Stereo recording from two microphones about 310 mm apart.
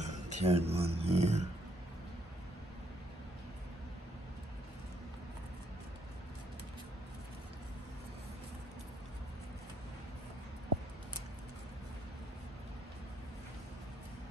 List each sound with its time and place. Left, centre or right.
0.0 s speech: right